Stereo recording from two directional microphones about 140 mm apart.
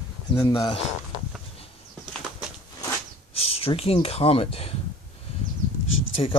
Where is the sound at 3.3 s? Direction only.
45° left (ahead or behind).